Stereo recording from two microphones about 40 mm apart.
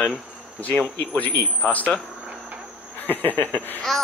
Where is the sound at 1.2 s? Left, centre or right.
Left.